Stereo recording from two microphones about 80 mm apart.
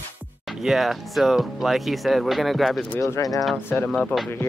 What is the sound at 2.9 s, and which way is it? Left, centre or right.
Speech, left.